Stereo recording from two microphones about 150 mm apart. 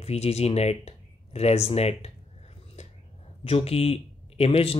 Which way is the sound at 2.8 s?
50° left (ahead or behind).